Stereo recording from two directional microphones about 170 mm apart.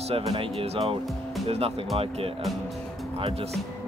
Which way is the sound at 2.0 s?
35° right (ahead or behind).